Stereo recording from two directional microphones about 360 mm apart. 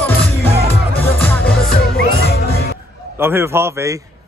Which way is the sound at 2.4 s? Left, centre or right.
Left.